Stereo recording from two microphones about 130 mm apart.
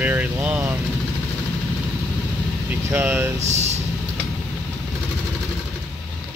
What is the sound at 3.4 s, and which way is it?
Speech, 60° right (ahead or behind).